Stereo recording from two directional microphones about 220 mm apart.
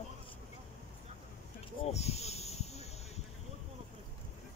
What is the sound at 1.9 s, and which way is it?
Snake, 30° left (ahead or behind).